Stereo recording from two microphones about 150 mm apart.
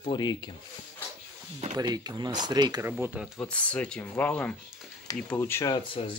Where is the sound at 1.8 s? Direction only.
30° right (ahead or behind).